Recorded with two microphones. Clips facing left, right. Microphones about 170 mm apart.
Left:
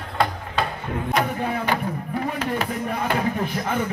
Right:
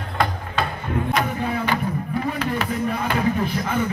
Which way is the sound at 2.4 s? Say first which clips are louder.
Right 2 dB; 45° left (ahead or behind).